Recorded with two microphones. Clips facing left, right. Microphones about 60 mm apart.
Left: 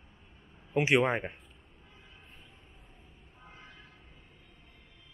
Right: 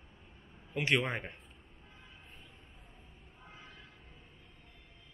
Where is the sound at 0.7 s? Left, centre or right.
Centre.